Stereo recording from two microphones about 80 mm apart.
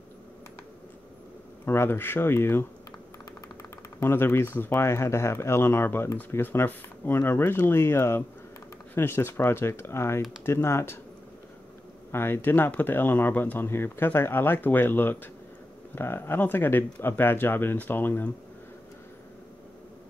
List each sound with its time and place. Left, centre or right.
1.7 s speech: left
4.0 s speech: left
12.1 s speech: left